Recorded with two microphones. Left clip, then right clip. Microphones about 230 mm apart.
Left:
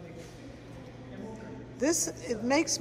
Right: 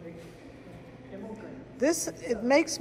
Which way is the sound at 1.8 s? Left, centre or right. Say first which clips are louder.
Right 2 dB; centre.